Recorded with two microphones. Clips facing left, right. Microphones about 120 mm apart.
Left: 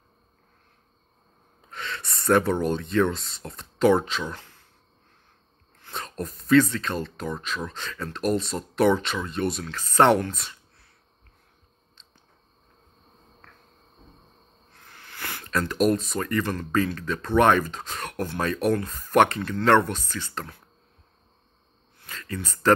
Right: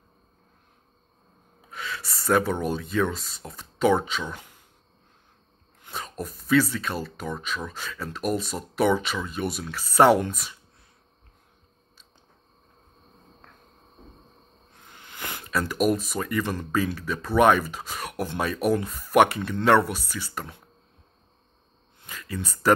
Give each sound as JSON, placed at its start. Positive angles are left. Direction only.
{"t": 1.7, "sound": "speech", "side_deg": -5}
{"t": 4.4, "sound": "a sound", "side_deg": -15}
{"t": 5.9, "sound": "speech", "side_deg": -5}
{"t": 14.7, "sound": "a sound", "side_deg": -20}
{"t": 15.7, "sound": "speech", "side_deg": -5}
{"t": 22.1, "sound": "speech", "side_deg": -10}